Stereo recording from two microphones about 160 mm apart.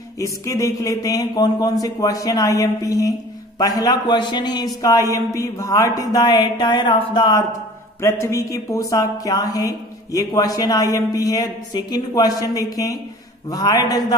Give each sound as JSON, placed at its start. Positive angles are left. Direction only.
{"t": 0.2, "sound": "a woman's voice", "side_deg": 20}